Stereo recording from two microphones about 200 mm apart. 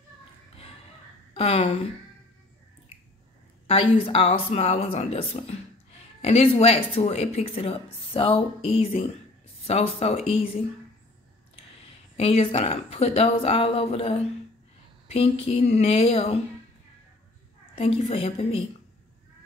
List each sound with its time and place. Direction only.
1.3 s a woman's voice: 30° left (ahead or behind)
3.6 s speech: 30° left (ahead or behind)
12.2 s speech: 30° left (ahead or behind)
17.7 s speech: 30° left (ahead or behind)